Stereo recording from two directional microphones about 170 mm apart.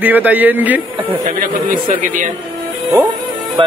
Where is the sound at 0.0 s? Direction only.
10° right (ahead or behind).